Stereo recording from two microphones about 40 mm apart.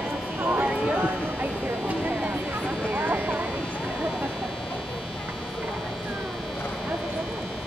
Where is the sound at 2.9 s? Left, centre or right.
Right.